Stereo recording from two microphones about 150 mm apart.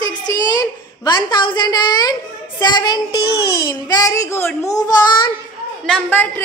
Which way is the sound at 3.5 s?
25° left (ahead or behind).